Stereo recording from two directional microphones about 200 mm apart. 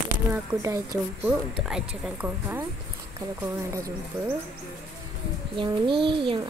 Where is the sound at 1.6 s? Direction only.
5° right (ahead or behind).